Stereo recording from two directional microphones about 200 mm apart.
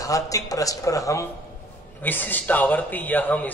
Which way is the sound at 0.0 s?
15° left (ahead or behind).